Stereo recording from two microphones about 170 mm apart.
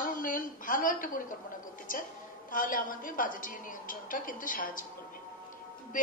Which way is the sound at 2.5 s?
55° left (ahead or behind).